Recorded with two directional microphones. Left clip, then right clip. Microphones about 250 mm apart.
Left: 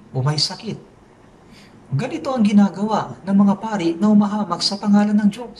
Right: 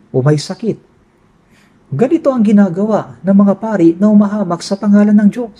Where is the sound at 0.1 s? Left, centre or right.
Right.